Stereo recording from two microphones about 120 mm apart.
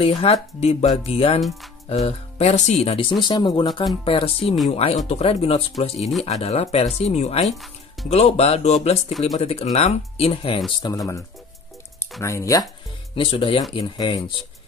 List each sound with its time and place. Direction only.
0.0 s speech: 55° left (ahead or behind)
3.3 s speech: 40° left (ahead or behind)
4.0 s speech: 50° left (ahead or behind)
10.8 s speech: 30° left (ahead or behind)
13.1 s speech: 45° left (ahead or behind)